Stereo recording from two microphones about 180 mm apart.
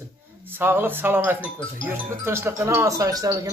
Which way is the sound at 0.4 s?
10° right (ahead or behind).